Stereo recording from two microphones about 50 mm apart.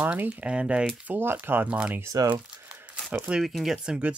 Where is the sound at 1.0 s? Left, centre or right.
Right.